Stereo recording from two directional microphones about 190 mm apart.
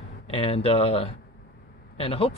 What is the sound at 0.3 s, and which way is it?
Speech, 30° left (ahead or behind).